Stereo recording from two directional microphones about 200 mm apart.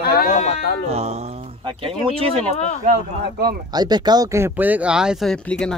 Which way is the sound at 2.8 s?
45° right (ahead or behind).